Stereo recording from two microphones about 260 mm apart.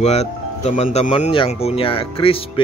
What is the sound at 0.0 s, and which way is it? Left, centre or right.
Speech, left.